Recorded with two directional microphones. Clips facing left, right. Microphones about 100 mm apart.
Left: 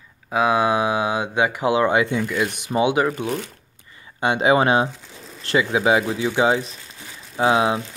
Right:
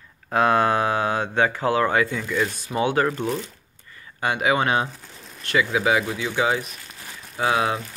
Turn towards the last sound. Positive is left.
turn(degrees=20)  # may be behind; listen again after turning